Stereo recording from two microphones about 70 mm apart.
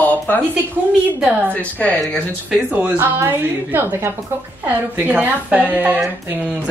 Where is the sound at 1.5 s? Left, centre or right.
Left.